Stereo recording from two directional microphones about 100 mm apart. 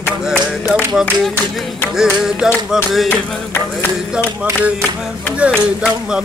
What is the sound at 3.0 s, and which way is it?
Music, 25° left (ahead or behind).